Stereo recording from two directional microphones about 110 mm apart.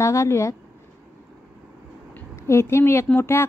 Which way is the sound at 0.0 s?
25° left (ahead or behind).